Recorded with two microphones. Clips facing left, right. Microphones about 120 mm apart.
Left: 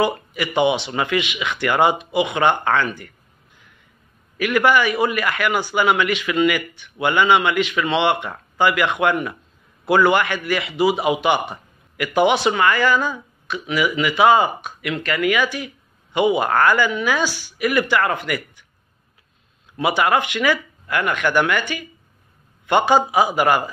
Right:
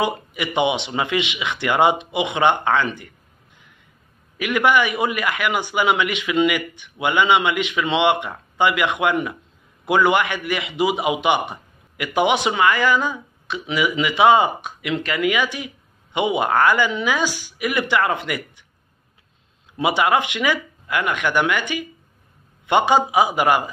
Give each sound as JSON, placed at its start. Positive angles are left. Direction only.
{"t": 0.0, "sound": "a man's voice", "side_deg": -20}
{"t": 4.4, "sound": "a man's voice", "side_deg": -20}
{"t": 19.8, "sound": "a man's voice", "side_deg": -20}